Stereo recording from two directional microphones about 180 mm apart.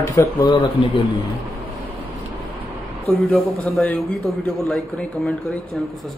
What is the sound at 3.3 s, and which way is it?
Speech, 5° left (ahead or behind).